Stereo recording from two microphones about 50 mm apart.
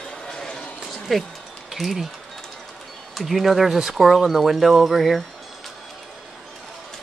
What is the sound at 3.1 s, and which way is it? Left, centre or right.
Speech, centre.